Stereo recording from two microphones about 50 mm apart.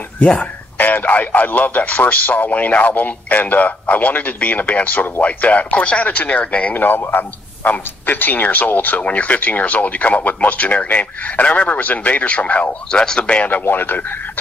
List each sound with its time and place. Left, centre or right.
0.7 s a man's voice: left
6.7 s a man's voice: left
12.9 s speech: centre
13.7 s a man's voice: left